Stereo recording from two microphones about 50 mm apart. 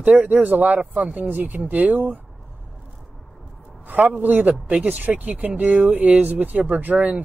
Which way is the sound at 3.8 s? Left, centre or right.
Right.